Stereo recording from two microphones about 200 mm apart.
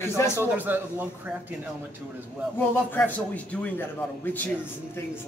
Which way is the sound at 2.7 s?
10° left (ahead or behind).